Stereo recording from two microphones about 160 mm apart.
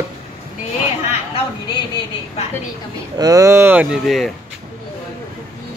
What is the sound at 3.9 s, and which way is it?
Speech, centre (ahead or behind).